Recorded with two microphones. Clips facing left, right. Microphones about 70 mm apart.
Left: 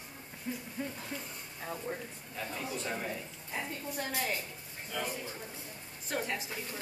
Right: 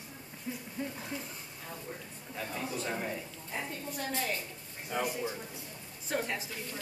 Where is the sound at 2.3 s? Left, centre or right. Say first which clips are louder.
Right 2 dB; centre.